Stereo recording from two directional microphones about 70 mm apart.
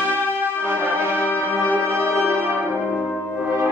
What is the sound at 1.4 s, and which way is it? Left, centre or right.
Music, right.